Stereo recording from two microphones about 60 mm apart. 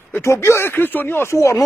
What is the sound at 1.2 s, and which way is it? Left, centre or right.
Speech, left.